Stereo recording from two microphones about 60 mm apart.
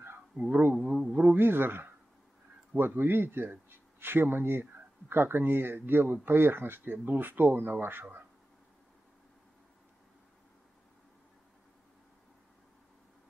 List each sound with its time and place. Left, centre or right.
0.5 s speech: right
0.7 s a sound: right
2.8 s speech: right